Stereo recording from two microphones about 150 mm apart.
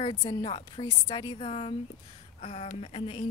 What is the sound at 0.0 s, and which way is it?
Speech, 35° left (ahead or behind).